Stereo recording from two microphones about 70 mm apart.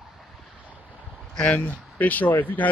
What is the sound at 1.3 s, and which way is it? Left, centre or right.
Speech, centre.